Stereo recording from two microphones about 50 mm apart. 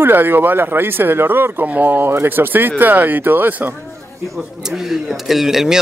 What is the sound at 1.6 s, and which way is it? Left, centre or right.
Speech, right.